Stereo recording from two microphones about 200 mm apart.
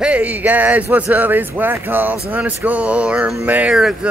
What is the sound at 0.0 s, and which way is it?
Speech, 5° right (ahead or behind).